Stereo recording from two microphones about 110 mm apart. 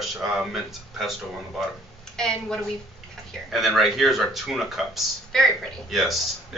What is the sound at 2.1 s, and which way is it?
Speech, 5° left (ahead or behind).